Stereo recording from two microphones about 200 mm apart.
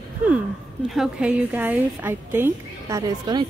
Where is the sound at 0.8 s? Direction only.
5° right (ahead or behind).